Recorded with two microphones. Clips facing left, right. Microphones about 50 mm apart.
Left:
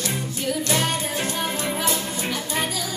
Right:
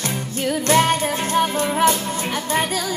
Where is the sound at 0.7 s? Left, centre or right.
Right.